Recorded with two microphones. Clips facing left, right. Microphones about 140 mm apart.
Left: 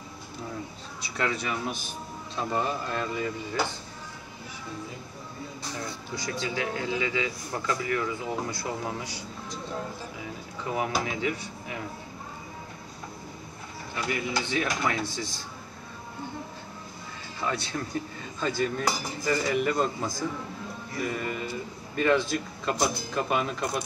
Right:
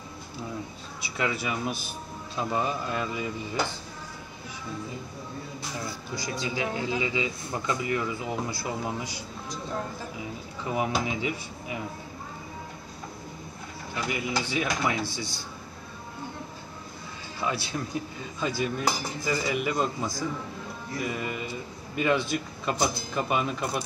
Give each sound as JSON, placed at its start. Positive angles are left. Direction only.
{"t": 1.0, "sound": "speech", "side_deg": -5}
{"t": 6.5, "sound": "speech", "side_deg": -20}
{"t": 10.7, "sound": "speech", "side_deg": -20}
{"t": 14.1, "sound": "speech", "side_deg": -10}
{"t": 17.4, "sound": "speech", "side_deg": -5}
{"t": 18.4, "sound": "cutlery", "side_deg": -5}
{"t": 21.1, "sound": "speech", "side_deg": -10}
{"t": 21.9, "sound": "cutlery", "side_deg": -5}